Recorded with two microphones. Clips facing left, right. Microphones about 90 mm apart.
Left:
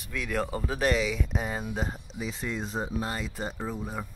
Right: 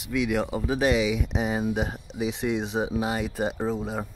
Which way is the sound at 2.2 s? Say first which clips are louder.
Right 7 dB; 75° right (ahead or behind).